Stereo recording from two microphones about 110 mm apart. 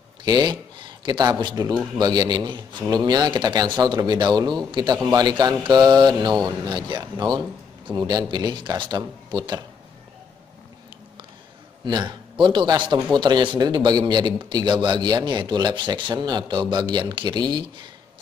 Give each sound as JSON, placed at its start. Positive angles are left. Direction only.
{"t": 0.2, "sound": "a sound", "side_deg": -40}
{"t": 1.4, "sound": "a man's voice", "side_deg": -40}
{"t": 11.8, "sound": "a man's voice", "side_deg": -45}